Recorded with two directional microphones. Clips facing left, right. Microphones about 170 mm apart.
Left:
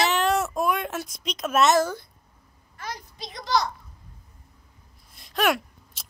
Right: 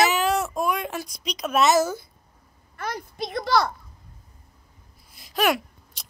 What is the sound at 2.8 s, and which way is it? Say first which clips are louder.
Speech: right 6 dB; 55° right (ahead or behind).